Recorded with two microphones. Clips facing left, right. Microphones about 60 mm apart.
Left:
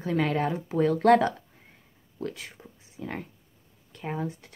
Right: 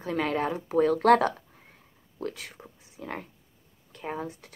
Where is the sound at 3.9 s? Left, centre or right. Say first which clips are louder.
Left 1 dB; centre.